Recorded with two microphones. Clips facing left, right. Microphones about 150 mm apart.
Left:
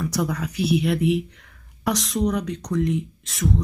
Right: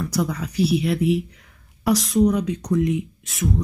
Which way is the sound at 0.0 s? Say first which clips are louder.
Right 1 dB; centre (ahead or behind).